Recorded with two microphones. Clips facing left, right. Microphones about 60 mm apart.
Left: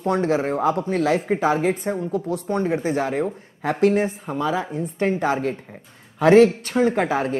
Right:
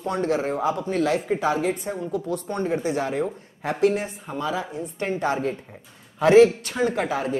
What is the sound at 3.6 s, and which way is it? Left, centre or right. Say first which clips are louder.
Speech: left 3 dB; left.